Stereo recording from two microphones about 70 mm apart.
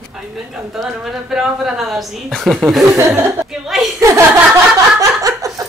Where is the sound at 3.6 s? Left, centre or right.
Centre.